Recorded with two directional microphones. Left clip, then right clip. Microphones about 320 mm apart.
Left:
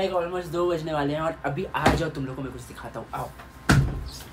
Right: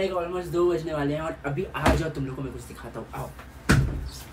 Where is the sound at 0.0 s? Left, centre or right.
Centre.